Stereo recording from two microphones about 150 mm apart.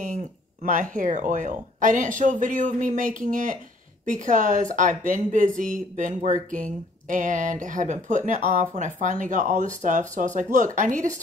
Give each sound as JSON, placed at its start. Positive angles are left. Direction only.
{"t": 0.0, "sound": "speech", "side_deg": -60}